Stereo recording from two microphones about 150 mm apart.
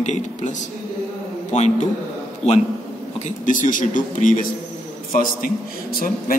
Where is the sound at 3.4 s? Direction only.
60° left (ahead or behind).